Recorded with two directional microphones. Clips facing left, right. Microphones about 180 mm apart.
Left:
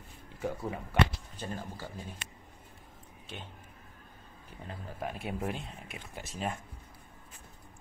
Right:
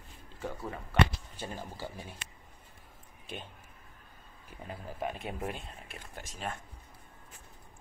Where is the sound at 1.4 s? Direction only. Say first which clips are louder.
Even; 15° right (ahead or behind).